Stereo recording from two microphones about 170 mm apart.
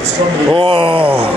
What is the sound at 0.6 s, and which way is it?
Speech, 30° right (ahead or behind).